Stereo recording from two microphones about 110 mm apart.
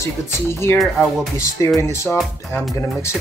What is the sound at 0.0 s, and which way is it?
Speech, 25° left (ahead or behind).